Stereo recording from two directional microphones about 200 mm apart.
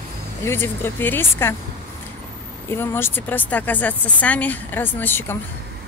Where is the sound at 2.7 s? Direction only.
10° left (ahead or behind).